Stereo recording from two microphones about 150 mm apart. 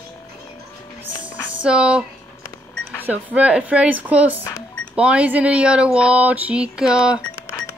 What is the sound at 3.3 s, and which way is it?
Speech, 10° right (ahead or behind).